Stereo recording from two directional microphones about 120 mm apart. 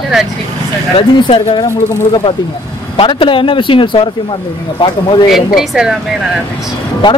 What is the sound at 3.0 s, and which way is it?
Speech, 45° left (ahead or behind).